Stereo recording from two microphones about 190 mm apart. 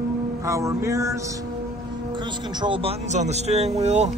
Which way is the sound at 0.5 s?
15° right (ahead or behind).